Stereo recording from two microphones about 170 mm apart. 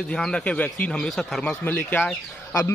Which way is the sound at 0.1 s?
5° left (ahead or behind).